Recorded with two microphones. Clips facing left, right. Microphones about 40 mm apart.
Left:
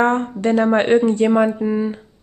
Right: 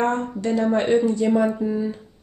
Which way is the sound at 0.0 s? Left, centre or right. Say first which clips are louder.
Left 5 dB; left.